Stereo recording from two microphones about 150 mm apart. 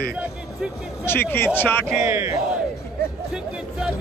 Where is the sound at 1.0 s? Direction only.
15° left (ahead or behind).